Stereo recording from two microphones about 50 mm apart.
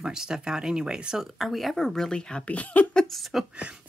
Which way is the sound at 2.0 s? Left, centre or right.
Centre.